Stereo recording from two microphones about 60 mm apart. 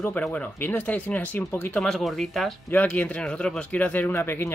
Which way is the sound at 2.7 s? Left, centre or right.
Left.